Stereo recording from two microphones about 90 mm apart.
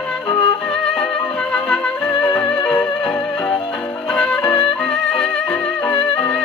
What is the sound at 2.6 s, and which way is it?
Music, 15° left (ahead or behind).